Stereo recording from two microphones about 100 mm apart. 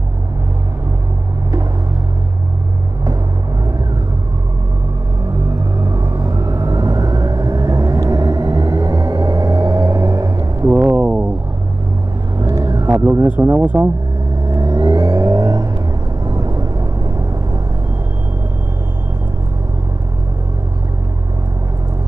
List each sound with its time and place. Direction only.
6.1 s vehicle: 35° right (ahead or behind)
10.7 s a sound: 20° right (ahead or behind)
12.4 s vehicle: 35° right (ahead or behind)
12.9 s speech: 30° right (ahead or behind)
14.5 s vehicle: 40° right (ahead or behind)